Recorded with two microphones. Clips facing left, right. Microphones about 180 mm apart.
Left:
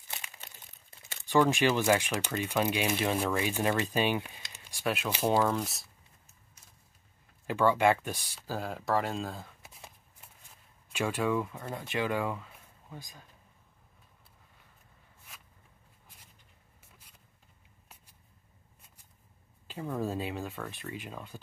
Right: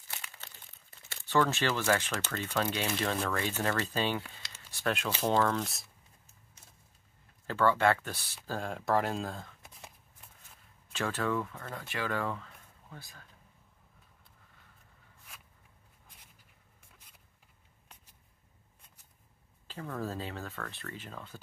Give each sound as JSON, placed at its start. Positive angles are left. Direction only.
{"t": 0.1, "sound": "crumpling", "side_deg": 15}
{"t": 1.0, "sound": "speech", "side_deg": 15}
{"t": 7.4, "sound": "speech", "side_deg": 15}
{"t": 8.4, "sound": "speech", "side_deg": 5}
{"t": 19.7, "sound": "speech", "side_deg": 15}